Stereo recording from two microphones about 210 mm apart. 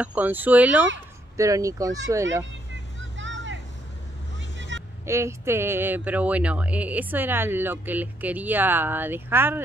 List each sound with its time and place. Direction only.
0.0 s speech: 5° right (ahead or behind)
3.2 s vehicle: 60° right (ahead or behind)
4.6 s vehicle: 60° right (ahead or behind)
5.0 s speech: 15° right (ahead or behind)